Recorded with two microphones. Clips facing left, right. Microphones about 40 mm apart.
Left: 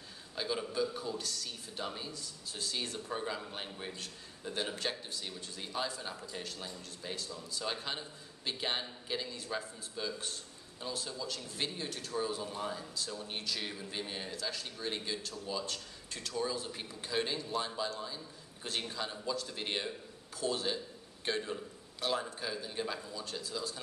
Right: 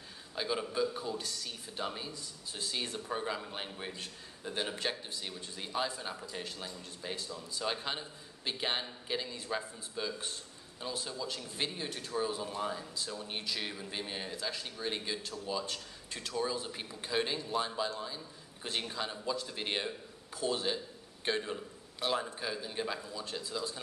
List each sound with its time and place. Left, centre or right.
0.4 s a man's voice: centre